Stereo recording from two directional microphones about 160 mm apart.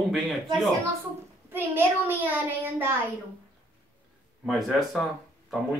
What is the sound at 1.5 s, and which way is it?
A child's voice, 15° right (ahead or behind).